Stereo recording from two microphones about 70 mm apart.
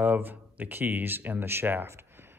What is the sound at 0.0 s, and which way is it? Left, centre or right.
Speech, right.